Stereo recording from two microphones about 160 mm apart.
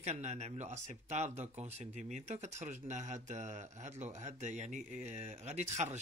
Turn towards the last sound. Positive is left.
turn(degrees=-45)  # may be behind; listen again after turning